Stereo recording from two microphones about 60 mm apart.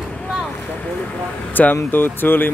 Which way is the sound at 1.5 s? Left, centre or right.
Left.